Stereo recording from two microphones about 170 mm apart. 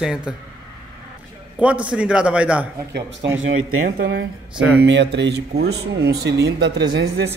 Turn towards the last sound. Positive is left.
turn(degrees=-75)  # may be behind; listen again after turning